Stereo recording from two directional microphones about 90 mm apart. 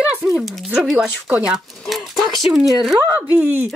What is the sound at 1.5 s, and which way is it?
Speech, centre (ahead or behind).